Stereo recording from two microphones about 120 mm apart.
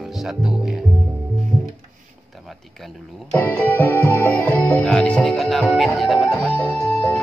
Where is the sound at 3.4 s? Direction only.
15° left (ahead or behind).